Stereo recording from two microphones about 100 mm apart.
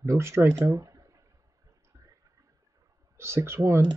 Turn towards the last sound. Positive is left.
turn(degrees=-25)  # may be behind; listen again after turning